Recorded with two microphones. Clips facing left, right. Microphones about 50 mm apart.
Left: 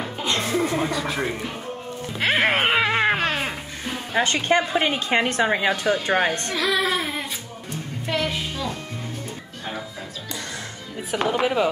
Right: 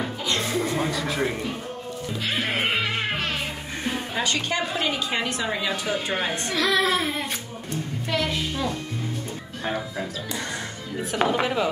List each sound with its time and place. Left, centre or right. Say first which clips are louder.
0.4 s music: left 4 dB; centre
0.7 s music: left 1 dB; centre
2.1 s music: left 7 dB; left
4.1 s a woman's voice: left 8 dB; left
6.5 s speech: even; centre
8.1 s a sound: left 1 dB; centre
11.1 s speech: even; centre
11.4 s speech: left 3 dB; centre